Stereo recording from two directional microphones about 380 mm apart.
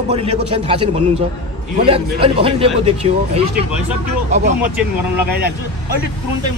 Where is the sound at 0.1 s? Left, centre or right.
Centre.